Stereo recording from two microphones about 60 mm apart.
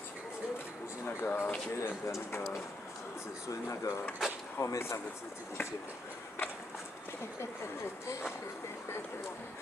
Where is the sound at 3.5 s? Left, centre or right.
Left.